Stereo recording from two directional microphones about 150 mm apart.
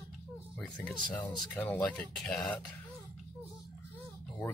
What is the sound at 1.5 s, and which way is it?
Speech, 10° left (ahead or behind).